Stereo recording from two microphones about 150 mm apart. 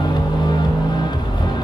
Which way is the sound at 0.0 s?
30° left (ahead or behind).